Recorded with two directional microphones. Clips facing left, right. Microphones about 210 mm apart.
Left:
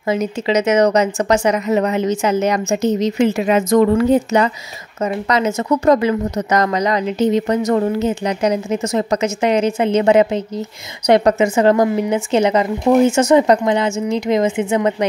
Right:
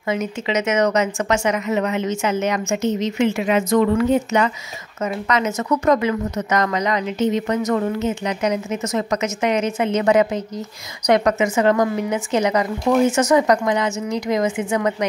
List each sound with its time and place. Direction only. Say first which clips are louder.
0.1 s a woman's voice: left 5 dB; 35° left (ahead or behind)